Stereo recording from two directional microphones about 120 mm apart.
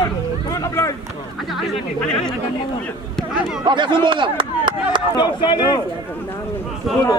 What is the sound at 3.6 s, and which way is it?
Speech, 40° right (ahead or behind).